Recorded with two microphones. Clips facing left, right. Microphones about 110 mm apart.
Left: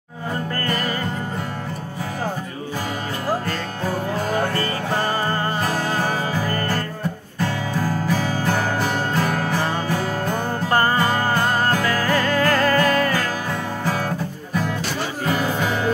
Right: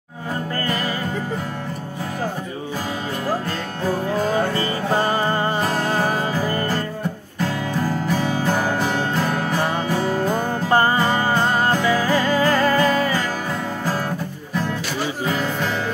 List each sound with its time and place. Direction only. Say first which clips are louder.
3.8 s music: right 3 dB; 5° left (ahead or behind)
4.6 s music: right 2 dB; 15° right (ahead or behind)
5.7 s music: right 2 dB; 5° right (ahead or behind)
6.5 s music: right 1 dB; 15° right (ahead or behind)
7.4 s music: right 1 dB; 5° left (ahead or behind)
10.7 s music: right 2 dB; 15° right (ahead or behind)
11.1 s music: right 1 dB; centre (ahead or behind)
11.9 s music: right 2 dB; 15° right (ahead or behind)
15.2 s music: left 3 dB; 5° left (ahead or behind)